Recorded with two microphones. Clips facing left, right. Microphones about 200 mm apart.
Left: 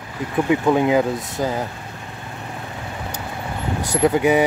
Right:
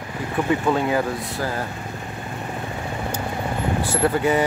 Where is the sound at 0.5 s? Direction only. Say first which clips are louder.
Left 4 dB; 15° left (ahead or behind).